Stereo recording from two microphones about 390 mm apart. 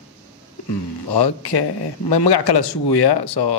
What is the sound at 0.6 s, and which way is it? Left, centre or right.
Speech, left.